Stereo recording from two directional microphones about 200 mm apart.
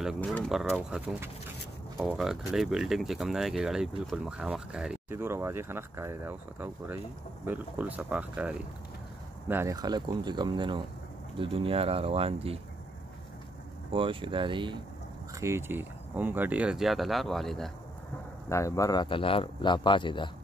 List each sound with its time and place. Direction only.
0.0 s speech: centre (ahead or behind); by 12.5 s 30° right (ahead or behind)
13.9 s speech: 25° right (ahead or behind)
15.3 s speech: 15° right (ahead or behind)
18.5 s speech: 15° left (ahead or behind)